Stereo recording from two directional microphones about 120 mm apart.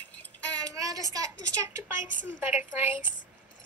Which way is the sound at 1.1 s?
30° right (ahead or behind).